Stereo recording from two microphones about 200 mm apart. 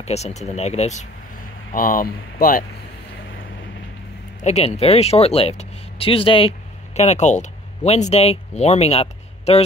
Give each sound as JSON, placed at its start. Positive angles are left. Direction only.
{"t": 0.0, "sound": "speech", "side_deg": 35}
{"t": 1.7, "sound": "speech", "side_deg": 45}
{"t": 4.4, "sound": "speech", "side_deg": 35}